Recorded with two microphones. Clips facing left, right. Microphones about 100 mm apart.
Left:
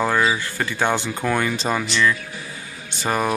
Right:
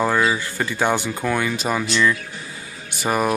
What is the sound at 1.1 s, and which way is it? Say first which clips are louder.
A man's voice: even; centre (ahead or behind).